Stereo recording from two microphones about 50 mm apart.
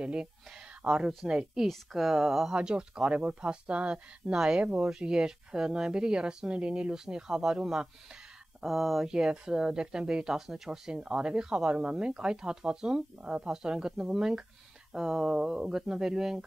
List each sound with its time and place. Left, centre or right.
0.0 s speech: centre
2.5 s speech: centre
8.6 s speech: centre
9.0 s speech: centre